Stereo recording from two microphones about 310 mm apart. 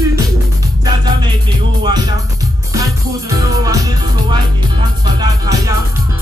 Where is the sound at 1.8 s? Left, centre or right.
Centre.